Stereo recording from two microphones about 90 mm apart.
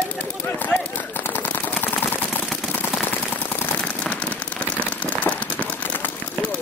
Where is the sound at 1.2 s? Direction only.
25° left (ahead or behind).